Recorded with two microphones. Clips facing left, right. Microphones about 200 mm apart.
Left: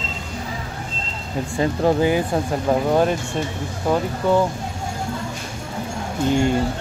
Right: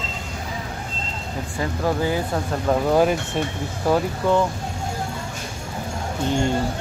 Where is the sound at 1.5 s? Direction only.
20° left (ahead or behind).